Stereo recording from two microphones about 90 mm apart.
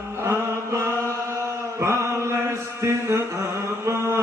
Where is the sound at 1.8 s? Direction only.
30° right (ahead or behind).